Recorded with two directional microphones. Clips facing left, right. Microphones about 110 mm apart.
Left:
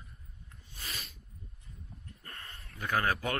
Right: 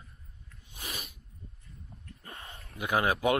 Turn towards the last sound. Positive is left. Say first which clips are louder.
# right 5 dB
turn(degrees=-15)  # may be behind; listen again after turning